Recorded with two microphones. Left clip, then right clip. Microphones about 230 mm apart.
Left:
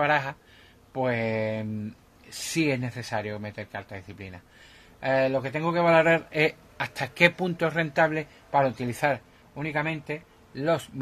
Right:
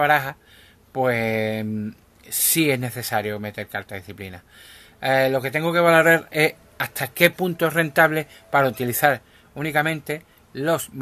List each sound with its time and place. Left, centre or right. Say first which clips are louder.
0.0 s speech: right 5 dB; right